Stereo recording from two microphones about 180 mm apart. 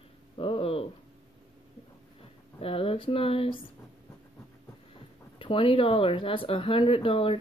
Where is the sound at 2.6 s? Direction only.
30° left (ahead or behind).